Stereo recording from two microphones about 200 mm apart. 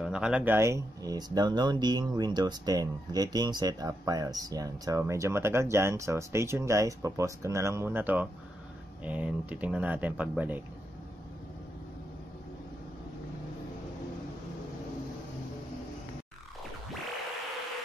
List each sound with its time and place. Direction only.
0.0 s speech: 5° right (ahead or behind)